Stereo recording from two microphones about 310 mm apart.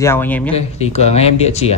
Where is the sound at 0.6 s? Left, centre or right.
Left.